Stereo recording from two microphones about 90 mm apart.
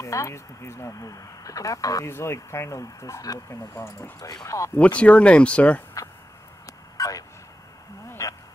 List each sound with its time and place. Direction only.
0.0 s speech: 35° left (ahead or behind)
2.0 s speech: 30° left (ahead or behind)
4.7 s speech: 15° left (ahead or behind)
6.6 s a sound: 40° left (ahead or behind)